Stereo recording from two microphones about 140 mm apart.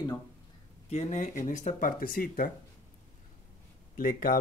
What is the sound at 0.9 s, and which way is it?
Speech, 55° left (ahead or behind).